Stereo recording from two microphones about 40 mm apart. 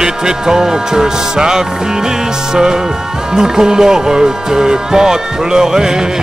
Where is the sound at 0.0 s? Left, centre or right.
Centre.